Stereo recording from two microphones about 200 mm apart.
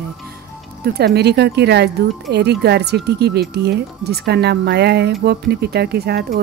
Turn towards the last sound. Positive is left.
turn(degrees=-55)  # may be behind; listen again after turning